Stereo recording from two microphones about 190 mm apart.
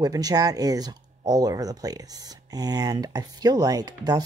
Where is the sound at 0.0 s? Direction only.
20° right (ahead or behind).